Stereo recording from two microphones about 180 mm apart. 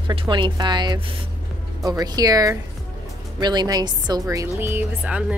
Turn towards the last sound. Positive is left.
turn(degrees=-5)  # may be behind; listen again after turning